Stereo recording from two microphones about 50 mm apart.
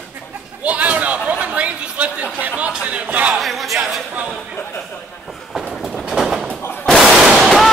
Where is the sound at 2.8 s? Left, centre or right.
Right.